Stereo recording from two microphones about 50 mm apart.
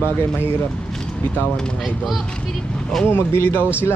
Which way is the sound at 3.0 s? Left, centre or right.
Left.